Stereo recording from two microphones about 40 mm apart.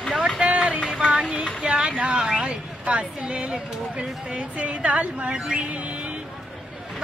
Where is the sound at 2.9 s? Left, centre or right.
Right.